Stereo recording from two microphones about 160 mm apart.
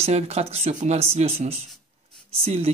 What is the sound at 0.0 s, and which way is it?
Speech, 40° right (ahead or behind).